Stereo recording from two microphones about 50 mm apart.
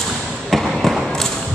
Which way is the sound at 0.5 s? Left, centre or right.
Centre.